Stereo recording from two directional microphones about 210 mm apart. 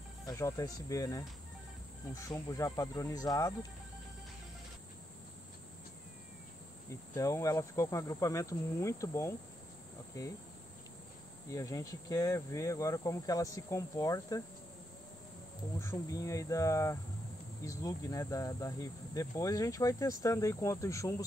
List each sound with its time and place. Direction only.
0.3 s speech: 15° left (ahead or behind)
6.9 s speech: 15° left (ahead or behind)
11.5 s speech: 15° left (ahead or behind)
15.8 s speech: 15° left (ahead or behind)